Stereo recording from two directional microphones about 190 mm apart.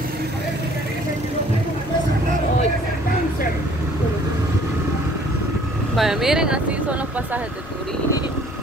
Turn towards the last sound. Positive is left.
turn(degrees=-5)  # may be behind; listen again after turning